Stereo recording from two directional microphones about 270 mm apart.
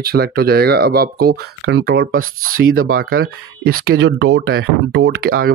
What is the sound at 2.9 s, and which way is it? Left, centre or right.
Speech, right.